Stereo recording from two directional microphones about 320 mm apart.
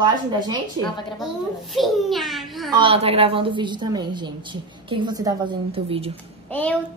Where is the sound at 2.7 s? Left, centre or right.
Centre.